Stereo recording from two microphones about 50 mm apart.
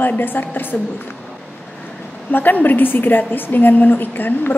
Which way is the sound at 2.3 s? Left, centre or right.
Left.